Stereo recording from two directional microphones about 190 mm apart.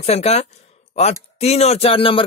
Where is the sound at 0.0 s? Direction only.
35° left (ahead or behind).